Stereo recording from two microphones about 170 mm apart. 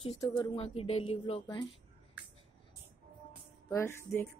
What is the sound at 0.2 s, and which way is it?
Speech, 30° left (ahead or behind).